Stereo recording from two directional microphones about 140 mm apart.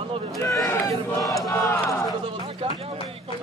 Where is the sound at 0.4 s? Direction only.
20° left (ahead or behind).